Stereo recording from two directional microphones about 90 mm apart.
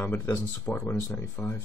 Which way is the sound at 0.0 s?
20° left (ahead or behind).